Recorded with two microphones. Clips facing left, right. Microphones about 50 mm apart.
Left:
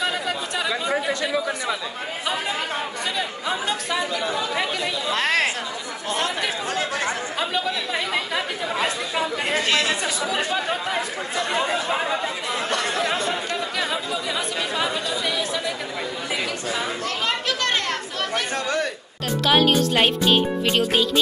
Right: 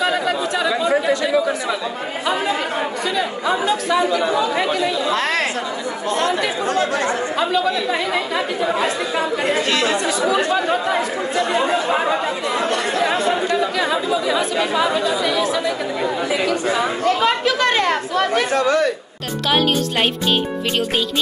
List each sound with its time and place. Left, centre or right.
0.0 s chatter: centre
3.6 s chatter: centre
4.2 s speech: centre
4.7 s speech: centre
8.6 s speech: centre
12.9 s chatter: centre
13.7 s speech: centre
17.0 s speech: centre